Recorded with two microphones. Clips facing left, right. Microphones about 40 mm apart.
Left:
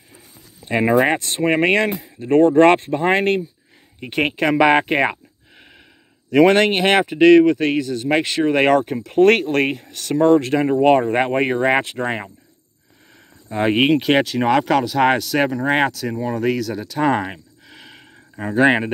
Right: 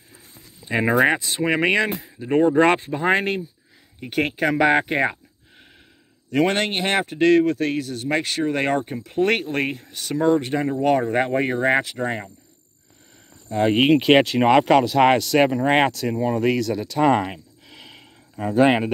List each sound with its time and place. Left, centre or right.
0.6 s a man's voice: left
6.3 s a man's voice: left
10.2 s speech: left
10.7 s speech: left
13.5 s speech: centre
13.9 s speech: centre
15.5 s speech: centre